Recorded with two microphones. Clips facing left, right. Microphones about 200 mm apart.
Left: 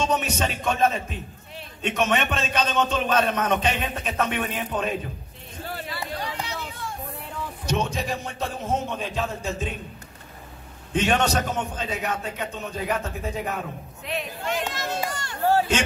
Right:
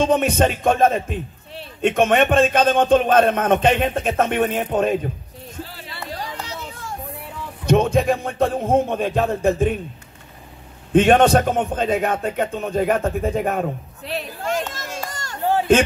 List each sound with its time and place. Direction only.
0.0 s speech: 55° right (ahead or behind)
7.6 s a man's voice: 55° right (ahead or behind)
10.9 s a man's voice: 55° right (ahead or behind)
14.0 s speech: 40° right (ahead or behind)
15.0 s run: 40° right (ahead or behind)